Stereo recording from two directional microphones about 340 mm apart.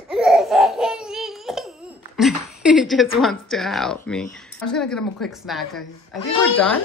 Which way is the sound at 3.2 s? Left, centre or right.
Centre.